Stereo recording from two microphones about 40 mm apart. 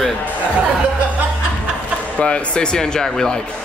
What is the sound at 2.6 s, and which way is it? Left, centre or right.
Speech, centre.